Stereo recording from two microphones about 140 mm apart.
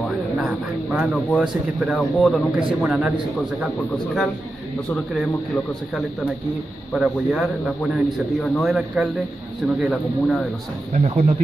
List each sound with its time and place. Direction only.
0.0 s a man's voice: centre (ahead or behind)
10.9 s speech: 55° right (ahead or behind)